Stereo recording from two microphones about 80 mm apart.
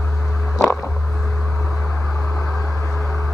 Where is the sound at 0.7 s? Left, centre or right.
Left.